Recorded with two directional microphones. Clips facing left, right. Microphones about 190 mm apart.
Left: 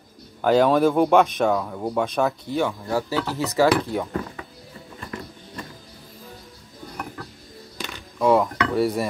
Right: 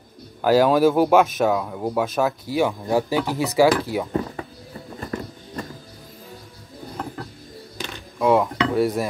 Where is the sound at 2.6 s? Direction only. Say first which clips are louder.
Right 5 dB; 15° right (ahead or behind).